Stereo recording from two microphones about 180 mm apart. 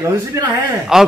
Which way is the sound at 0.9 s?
5° right (ahead or behind).